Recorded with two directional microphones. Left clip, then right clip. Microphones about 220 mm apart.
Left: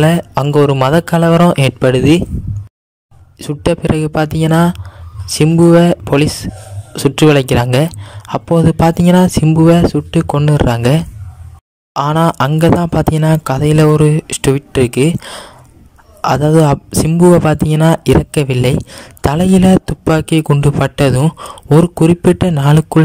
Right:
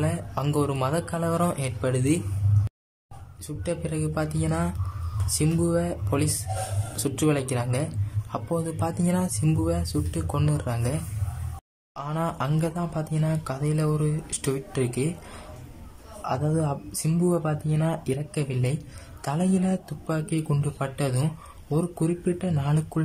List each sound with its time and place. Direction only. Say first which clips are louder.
0.0 s speech: left 16 dB; 45° left (ahead or behind)
3.3 s speech: left 16 dB; 40° left (ahead or behind)
16.2 s speech: left 17 dB; 45° left (ahead or behind)